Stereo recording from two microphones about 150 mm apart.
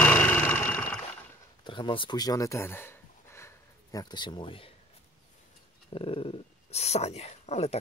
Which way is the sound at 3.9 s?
30° left (ahead or behind).